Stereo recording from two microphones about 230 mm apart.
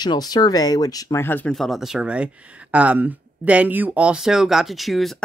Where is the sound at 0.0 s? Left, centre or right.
Centre.